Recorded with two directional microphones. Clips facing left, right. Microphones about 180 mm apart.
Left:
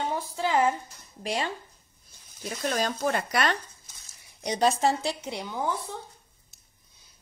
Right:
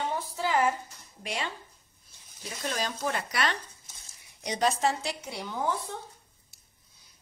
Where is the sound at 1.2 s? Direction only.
35° left (ahead or behind).